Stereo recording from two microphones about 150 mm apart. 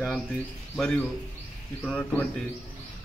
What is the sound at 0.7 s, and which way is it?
A man's voice, 5° left (ahead or behind).